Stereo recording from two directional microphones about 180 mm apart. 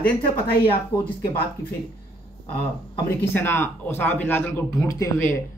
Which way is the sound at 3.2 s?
15° left (ahead or behind).